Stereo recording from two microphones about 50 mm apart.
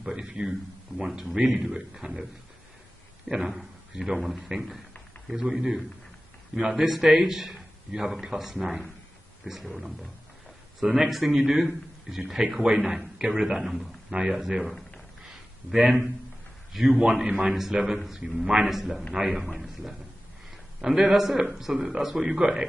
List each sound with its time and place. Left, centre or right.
0.0 s a man's voice: centre
1.0 s a man's voice: centre
3.3 s a man's voice: centre
15.2 s a sound: centre
16.7 s a man's voice: centre
18.7 s a man's voice: centre
21.1 s a man's voice: centre
21.4 s a man's voice: centre